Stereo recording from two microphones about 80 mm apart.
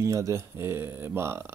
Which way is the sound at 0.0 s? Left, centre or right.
Right.